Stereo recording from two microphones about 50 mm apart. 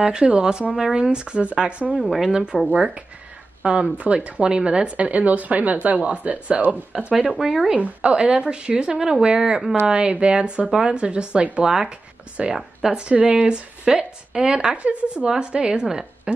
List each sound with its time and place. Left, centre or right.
0.0 s speech: right
2.0 s speech: centre
2.3 s speech: centre
7.0 s speech: centre
7.7 s speech: right
11.6 s speech: centre